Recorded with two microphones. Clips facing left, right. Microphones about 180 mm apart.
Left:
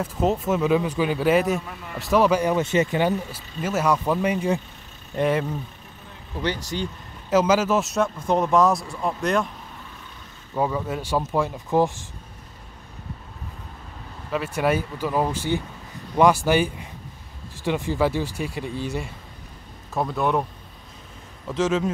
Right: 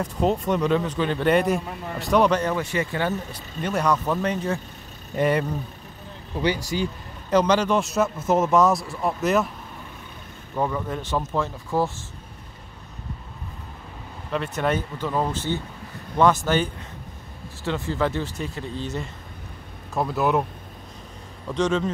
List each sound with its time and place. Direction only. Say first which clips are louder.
0.0 s a man's voice: even; 5° left (ahead or behind)
2.5 s speech: left 4 dB; 20° left (ahead or behind)
3.3 s speech: even; 5° left (ahead or behind)
5.1 s a man's voice: even; centre (ahead or behind)
6.3 s speech: right 3 dB; 10° right (ahead or behind)
7.2 s a man's voice: even; 5° left (ahead or behind)
10.5 s speech: left 1 dB; 10° left (ahead or behind)
14.3 s speech: left 2 dB; 5° left (ahead or behind)
19.9 s a man's voice: right 1 dB; centre (ahead or behind)
21.5 s a man's voice: even; 5° left (ahead or behind)